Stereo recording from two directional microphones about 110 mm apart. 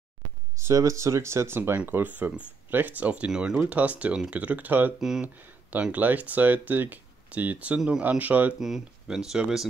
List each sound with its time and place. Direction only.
0.6 s speech: 25° right (ahead or behind)
5.0 s speech: 5° right (ahead or behind)